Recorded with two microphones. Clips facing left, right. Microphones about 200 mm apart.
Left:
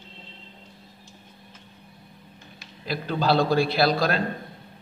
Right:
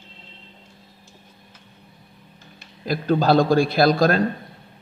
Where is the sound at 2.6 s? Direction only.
45° right (ahead or behind).